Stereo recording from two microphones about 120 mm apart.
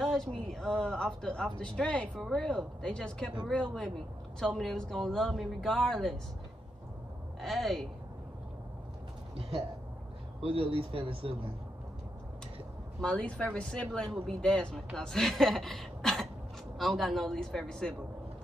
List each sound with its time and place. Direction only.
0.0 s speech: 5° left (ahead or behind)
4.4 s speech: 5° left (ahead or behind)
7.3 s a woman's voice: centre (ahead or behind)
10.4 s speech: 50° right (ahead or behind)
13.0 s speech: 10° left (ahead or behind)